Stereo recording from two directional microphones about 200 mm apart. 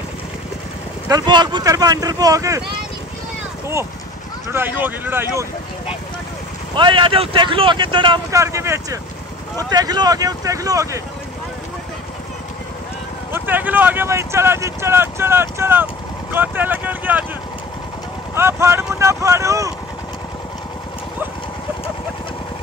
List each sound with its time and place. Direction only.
1.0 s speech: 20° right (ahead or behind)
4.5 s speech: 10° right (ahead or behind)
6.7 s speech: 25° right (ahead or behind)
13.3 s speech: 10° right (ahead or behind)
18.3 s speech: 10° right (ahead or behind)